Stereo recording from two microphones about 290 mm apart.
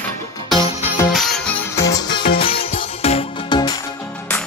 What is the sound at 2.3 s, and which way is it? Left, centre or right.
Music, centre.